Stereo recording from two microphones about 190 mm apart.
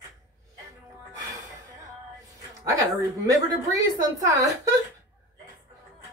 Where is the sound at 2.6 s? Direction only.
20° right (ahead or behind).